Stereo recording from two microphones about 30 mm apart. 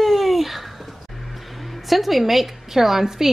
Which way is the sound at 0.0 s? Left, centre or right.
Centre.